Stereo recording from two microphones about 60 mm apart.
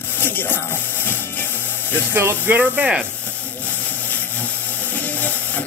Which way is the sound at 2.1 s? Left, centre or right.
Right.